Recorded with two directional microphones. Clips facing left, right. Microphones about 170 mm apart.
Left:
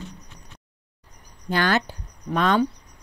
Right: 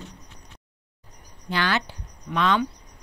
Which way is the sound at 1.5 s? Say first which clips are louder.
Left 3 dB; 45° left (ahead or behind).